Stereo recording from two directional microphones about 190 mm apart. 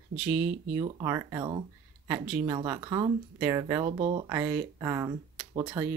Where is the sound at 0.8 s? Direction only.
20° right (ahead or behind).